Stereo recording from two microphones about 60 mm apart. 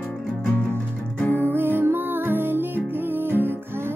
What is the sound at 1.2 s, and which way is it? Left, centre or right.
Music, left.